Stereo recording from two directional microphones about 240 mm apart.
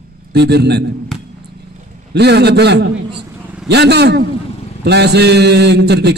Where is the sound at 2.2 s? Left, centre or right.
Right.